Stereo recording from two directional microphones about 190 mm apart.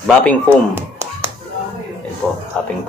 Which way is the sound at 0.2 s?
10° left (ahead or behind).